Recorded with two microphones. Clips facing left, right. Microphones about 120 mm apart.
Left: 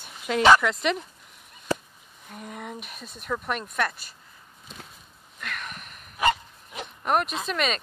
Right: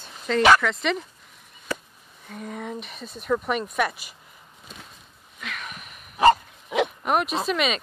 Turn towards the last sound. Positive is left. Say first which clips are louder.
# right 3 dB
turn(degrees=-5)  # may be behind; listen again after turning